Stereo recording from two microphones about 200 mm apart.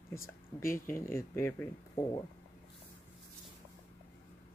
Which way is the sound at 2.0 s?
25° left (ahead or behind).